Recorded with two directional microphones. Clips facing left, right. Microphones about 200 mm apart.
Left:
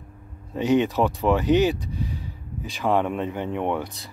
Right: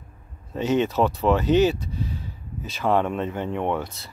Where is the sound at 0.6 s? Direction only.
15° left (ahead or behind).